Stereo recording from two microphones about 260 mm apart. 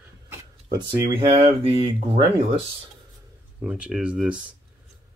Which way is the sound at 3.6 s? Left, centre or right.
Centre.